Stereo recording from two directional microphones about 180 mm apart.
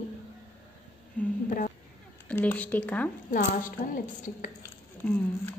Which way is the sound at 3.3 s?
50° left (ahead or behind).